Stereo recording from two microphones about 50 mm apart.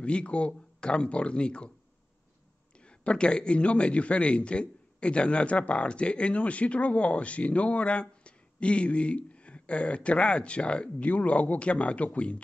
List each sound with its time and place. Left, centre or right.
0.0 s a man's voice: left
3.0 s a man's voice: left